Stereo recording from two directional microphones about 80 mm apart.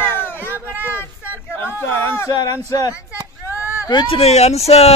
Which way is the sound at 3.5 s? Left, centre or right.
Left.